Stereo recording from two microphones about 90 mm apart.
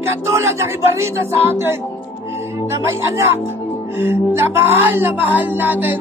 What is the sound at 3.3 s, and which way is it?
Speech, 25° right (ahead or behind).